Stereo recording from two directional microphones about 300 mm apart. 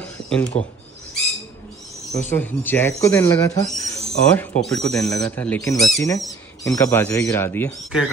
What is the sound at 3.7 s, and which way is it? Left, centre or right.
Owl, centre.